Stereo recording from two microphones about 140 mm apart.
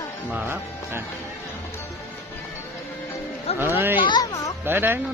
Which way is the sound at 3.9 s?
35° left (ahead or behind).